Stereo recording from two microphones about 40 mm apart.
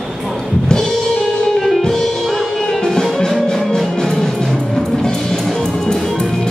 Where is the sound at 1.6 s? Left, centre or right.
Centre.